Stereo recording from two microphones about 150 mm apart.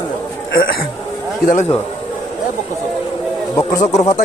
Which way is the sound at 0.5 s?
90° left.